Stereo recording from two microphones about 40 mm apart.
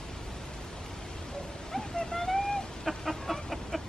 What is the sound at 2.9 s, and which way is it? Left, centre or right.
Chicken, centre.